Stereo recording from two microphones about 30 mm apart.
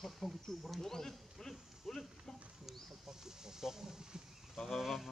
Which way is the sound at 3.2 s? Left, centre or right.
Centre.